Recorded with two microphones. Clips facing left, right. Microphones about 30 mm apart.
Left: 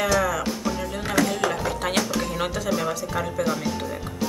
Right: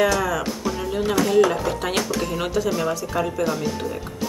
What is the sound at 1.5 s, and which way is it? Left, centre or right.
Speech, centre.